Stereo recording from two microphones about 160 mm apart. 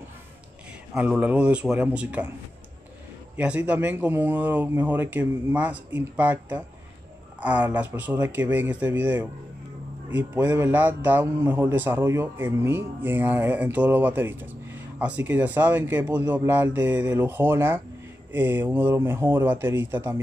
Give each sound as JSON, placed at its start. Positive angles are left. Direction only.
{"t": 0.9, "sound": "a man's voice", "side_deg": -10}
{"t": 3.3, "sound": "a man's voice", "side_deg": -10}